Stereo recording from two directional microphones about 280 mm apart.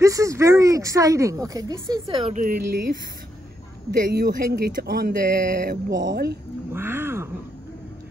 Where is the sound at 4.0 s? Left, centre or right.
Right.